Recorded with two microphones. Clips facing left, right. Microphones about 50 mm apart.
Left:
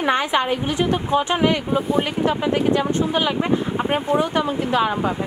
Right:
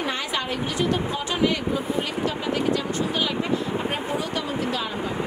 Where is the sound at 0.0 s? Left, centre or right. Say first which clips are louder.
Left 8 dB; left.